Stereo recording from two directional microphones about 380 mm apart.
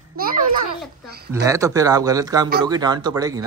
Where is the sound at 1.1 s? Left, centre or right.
Right.